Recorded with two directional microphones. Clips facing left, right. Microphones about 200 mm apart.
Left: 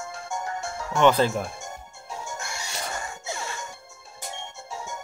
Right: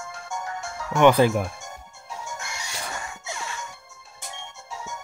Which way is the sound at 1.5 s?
30° left (ahead or behind).